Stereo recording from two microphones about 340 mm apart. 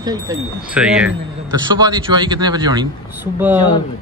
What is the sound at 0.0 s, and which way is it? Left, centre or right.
Speech, centre.